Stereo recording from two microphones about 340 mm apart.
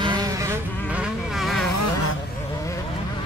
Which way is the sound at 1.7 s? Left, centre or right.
Left.